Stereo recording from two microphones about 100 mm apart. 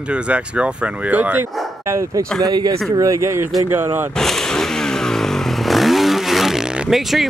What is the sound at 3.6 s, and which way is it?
Speech, 20° right (ahead or behind).